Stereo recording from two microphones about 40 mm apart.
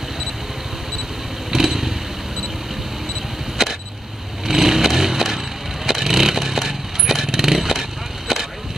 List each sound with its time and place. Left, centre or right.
1.5 s motorcycle: centre
4.5 s vehicle: centre